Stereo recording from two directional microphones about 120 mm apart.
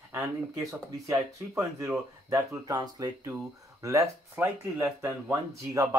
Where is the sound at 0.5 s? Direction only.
25° right (ahead or behind).